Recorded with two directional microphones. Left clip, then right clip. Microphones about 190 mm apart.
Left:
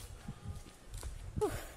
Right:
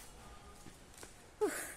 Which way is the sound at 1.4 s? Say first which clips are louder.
Even; 15° right (ahead or behind).